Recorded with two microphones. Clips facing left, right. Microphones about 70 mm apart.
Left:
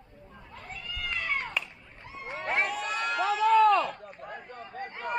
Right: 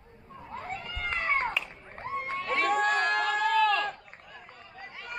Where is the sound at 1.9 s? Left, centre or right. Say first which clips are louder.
Right 7 dB; right.